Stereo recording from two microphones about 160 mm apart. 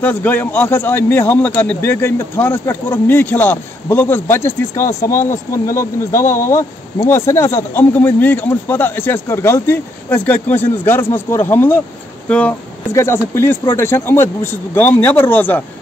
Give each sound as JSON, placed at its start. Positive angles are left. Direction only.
{"t": 0.0, "sound": "speech", "side_deg": 10}